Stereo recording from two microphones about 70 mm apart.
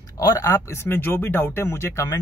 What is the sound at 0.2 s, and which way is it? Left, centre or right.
Speech, left.